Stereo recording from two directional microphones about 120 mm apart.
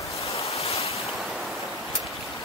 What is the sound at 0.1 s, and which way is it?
Ocean, 60° left (ahead or behind).